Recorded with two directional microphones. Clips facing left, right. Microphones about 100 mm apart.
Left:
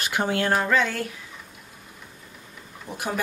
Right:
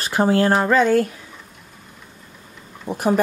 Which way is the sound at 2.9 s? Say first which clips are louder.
Right 10 dB; 40° right (ahead or behind).